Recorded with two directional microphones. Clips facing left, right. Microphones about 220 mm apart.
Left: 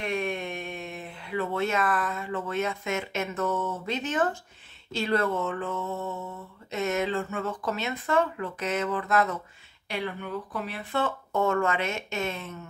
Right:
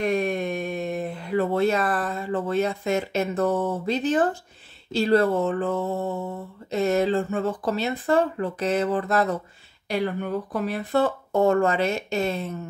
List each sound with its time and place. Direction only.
0.0 s speech: 40° right (ahead or behind)